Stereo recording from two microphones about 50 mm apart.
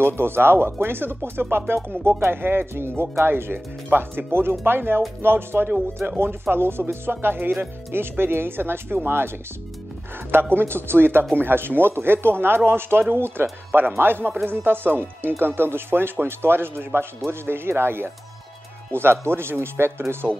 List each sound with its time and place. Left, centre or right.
0.0 s speech: right
10.5 s speech: right